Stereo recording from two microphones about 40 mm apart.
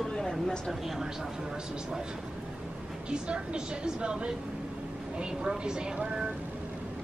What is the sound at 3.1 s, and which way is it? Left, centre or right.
A woman's voice, right.